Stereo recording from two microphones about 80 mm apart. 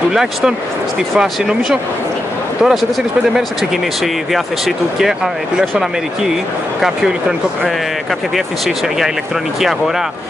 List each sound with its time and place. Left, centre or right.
0.1 s speech: centre
8.6 s speech: centre